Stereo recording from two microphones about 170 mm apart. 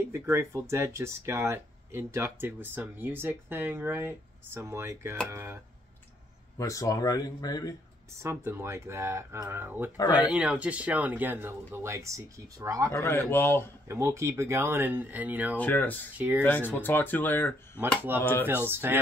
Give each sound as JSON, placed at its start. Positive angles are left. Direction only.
{"t": 0.1, "sound": "speech", "side_deg": -15}
{"t": 6.6, "sound": "speech", "side_deg": 20}
{"t": 8.2, "sound": "speech", "side_deg": -15}
{"t": 12.9, "sound": "speech", "side_deg": 15}
{"t": 13.8, "sound": "speech", "side_deg": -15}
{"t": 15.5, "sound": "speech", "side_deg": 10}
{"t": 16.2, "sound": "speech", "side_deg": -10}
{"t": 16.4, "sound": "speech", "side_deg": 10}
{"t": 17.7, "sound": "speech", "side_deg": -10}
{"t": 18.2, "sound": "speech", "side_deg": 10}
{"t": 18.5, "sound": "speech", "side_deg": -15}